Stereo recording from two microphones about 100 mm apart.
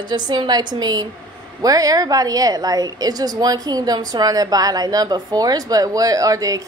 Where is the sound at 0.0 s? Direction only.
50° right (ahead or behind).